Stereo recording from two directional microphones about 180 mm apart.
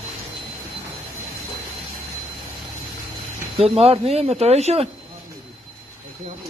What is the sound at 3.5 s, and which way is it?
Speech, 35° right (ahead or behind).